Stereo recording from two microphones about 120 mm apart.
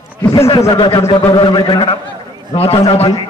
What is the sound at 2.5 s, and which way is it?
Speech, 55° left (ahead or behind).